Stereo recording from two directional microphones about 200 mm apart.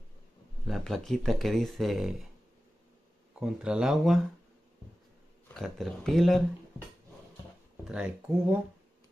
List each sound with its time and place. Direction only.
0.7 s speech: centre (ahead or behind)
3.3 s speech: 5° right (ahead or behind)
5.5 s speech: centre (ahead or behind)
7.9 s speech: 5° right (ahead or behind)